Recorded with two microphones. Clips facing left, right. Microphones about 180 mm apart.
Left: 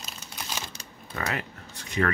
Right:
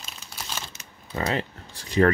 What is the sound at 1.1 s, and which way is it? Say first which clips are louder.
Speech: right 5 dB; 30° right (ahead or behind).